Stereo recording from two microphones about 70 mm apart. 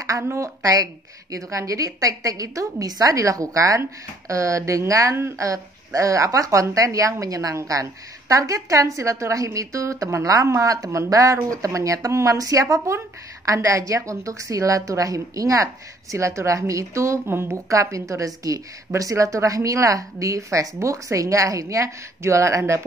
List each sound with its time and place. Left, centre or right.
0.2 s speech: right